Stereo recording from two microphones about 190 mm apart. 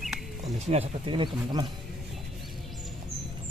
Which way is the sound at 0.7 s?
30° right (ahead or behind).